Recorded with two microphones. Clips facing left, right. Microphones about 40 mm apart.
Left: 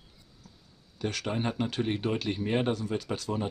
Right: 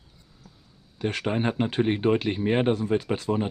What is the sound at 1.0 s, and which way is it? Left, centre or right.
Speech, right.